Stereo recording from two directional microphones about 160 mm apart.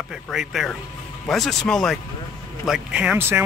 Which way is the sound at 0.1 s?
Centre (ahead or behind).